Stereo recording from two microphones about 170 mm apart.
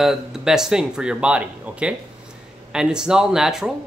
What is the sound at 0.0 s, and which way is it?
Speech, centre (ahead or behind).